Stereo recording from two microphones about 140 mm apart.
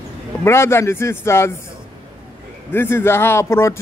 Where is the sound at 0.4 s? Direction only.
20° left (ahead or behind).